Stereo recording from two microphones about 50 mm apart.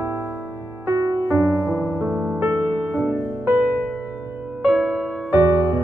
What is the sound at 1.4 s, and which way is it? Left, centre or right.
Music, right.